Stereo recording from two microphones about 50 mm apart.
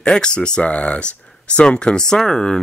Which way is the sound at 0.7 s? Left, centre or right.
Left.